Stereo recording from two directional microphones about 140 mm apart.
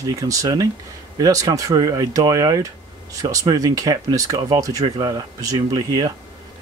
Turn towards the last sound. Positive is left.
turn(degrees=-30)  # may be behind; listen again after turning